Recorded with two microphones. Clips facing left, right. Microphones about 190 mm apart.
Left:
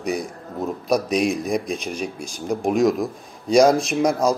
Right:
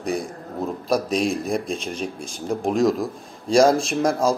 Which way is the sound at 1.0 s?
15° left (ahead or behind).